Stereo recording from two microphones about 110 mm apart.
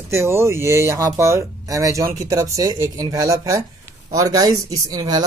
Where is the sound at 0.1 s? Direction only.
25° right (ahead or behind).